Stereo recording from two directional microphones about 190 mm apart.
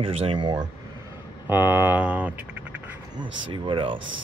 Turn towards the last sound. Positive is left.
turn(degrees=-25)  # may be behind; listen again after turning